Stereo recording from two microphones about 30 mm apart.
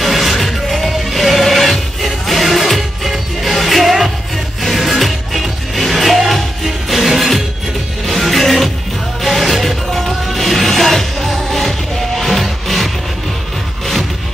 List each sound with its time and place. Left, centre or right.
0.0 s music: centre